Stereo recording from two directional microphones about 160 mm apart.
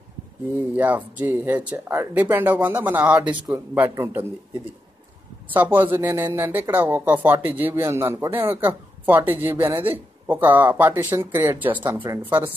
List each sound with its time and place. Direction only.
0.7 s a man's voice: 10° right (ahead or behind)
5.5 s a man's voice: 10° right (ahead or behind)